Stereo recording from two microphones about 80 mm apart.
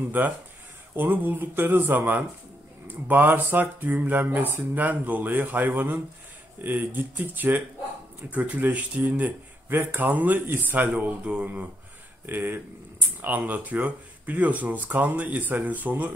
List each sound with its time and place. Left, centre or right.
0.9 s speech: right